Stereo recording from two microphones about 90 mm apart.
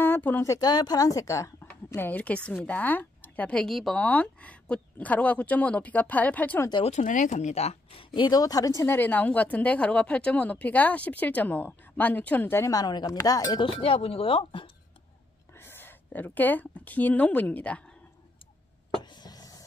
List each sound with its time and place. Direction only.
0.0 s a sound: 20° left (ahead or behind)
0.4 s speech: 40° left (ahead or behind)
2.0 s speech: 15° left (ahead or behind); by 4.0 s centre (ahead or behind)
4.0 s speech: 15° left (ahead or behind)
7.9 s speech: 75° left (ahead or behind)
8.3 s speech: 45° left (ahead or behind)
8.8 s a woman's voice: 20° left (ahead or behind)
12.7 s speech: 45° left (ahead or behind)
13.6 s speech: 90° left; by 14.7 s 75° left (ahead or behind)
15.5 s a woman's voice: 25° left (ahead or behind)
19.0 s a sound: 50° left (ahead or behind)